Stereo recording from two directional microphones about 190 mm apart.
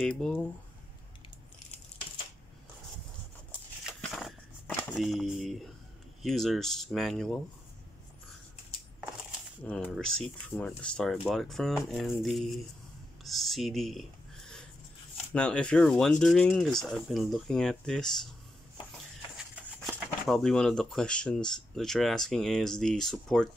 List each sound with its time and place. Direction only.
0.0 s speech: 5° left (ahead or behind)
3.8 s a sound: centre (ahead or behind)
6.2 s speech: centre (ahead or behind)
9.7 s speech: 5° left (ahead or behind)
13.2 s a sound: centre (ahead or behind)
15.3 s speech: 5° left (ahead or behind)
19.3 s speech: 5° right (ahead or behind)